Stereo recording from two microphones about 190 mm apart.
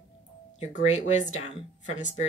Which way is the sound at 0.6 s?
40° left (ahead or behind).